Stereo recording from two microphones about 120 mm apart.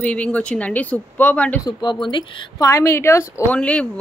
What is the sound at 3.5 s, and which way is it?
Speech, 10° left (ahead or behind).